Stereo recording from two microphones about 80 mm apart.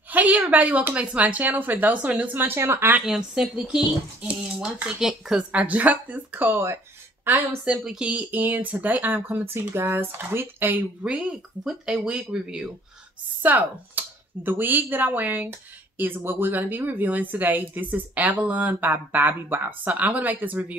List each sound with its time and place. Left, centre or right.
0.1 s speech: right
2.3 s speech: right
3.1 s speech: centre
5.5 s speech: centre
7.8 s speech: centre
13.4 s speech: right